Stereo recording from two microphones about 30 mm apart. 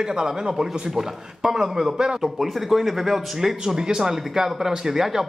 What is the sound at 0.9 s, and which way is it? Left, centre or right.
A man's voice, centre.